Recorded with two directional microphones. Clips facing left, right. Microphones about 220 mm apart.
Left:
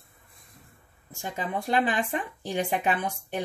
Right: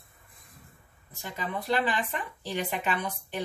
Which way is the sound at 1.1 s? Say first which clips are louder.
Left 3 dB; 50° left (ahead or behind).